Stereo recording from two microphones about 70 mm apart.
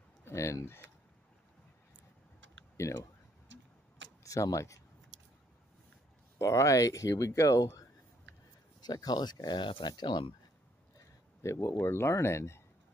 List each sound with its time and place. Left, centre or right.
0.3 s speech: left
2.8 s speech: left
4.2 s speech: left
6.3 s speech: left
8.8 s speech: left
11.4 s speech: left